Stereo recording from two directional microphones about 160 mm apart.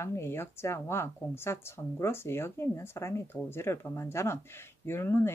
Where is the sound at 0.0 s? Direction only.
15° left (ahead or behind).